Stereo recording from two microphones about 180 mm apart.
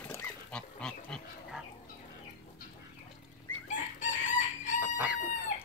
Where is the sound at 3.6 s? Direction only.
45° left (ahead or behind).